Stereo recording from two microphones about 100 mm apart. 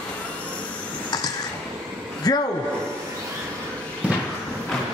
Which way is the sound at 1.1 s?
40° left (ahead or behind).